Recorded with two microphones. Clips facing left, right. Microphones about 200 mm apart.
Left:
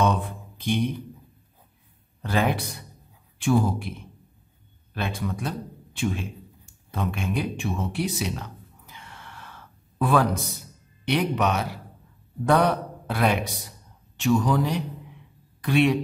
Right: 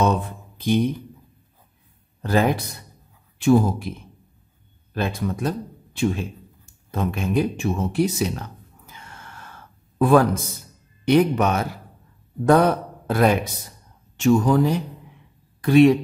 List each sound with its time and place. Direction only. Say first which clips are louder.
0.0 s mantra: right 3 dB; 40° right (ahead or behind)
2.2 s speech: right 4 dB; 40° right (ahead or behind)
4.9 s speech: right 5 dB; 40° right (ahead or behind)
6.9 s a sound: right 4 dB; 40° right (ahead or behind)
11.1 s a man's voice: right 6 dB; 45° right (ahead or behind)